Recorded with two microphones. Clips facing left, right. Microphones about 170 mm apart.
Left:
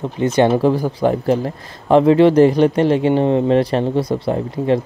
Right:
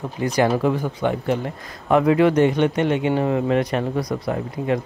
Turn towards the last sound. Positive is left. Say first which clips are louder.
# left 5 dB
turn(degrees=30)  # may be behind; listen again after turning